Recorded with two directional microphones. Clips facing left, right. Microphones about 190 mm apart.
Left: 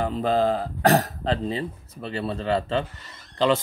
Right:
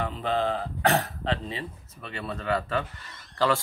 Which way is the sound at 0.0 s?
40° left (ahead or behind).